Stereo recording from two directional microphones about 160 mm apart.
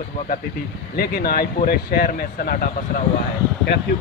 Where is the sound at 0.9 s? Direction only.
75° left (ahead or behind).